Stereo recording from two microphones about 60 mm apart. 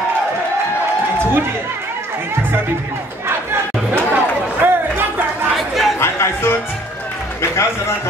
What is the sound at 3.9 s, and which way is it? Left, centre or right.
Chatter, right.